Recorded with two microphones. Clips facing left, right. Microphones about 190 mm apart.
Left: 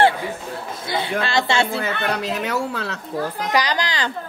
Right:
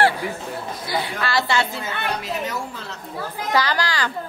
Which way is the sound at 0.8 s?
25° left (ahead or behind).